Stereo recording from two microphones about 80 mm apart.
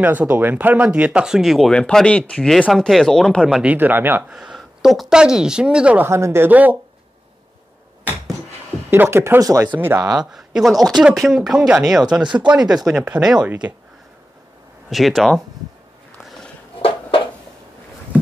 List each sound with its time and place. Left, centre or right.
0.0 s speech: right; by 1.7 s centre
1.7 s speech: centre
2.7 s speech: centre
3.6 s speech: right
4.3 s speech: centre
6.0 s speech: right
6.5 s speech: right
8.9 s speech: right
9.4 s speech: right
9.7 s speech: right
10.1 s speech: centre
14.9 s speech: centre
16.2 s a sound: centre